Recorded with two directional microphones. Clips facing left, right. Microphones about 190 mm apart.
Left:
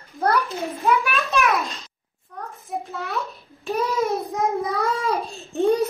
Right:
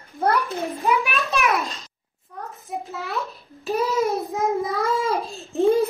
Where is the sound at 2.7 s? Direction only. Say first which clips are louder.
Left 1 dB; centre (ahead or behind).